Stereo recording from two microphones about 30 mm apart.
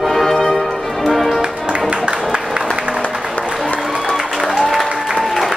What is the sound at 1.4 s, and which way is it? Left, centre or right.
Music, right.